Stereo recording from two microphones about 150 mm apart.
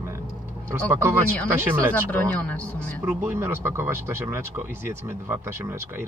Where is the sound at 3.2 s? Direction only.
15° right (ahead or behind).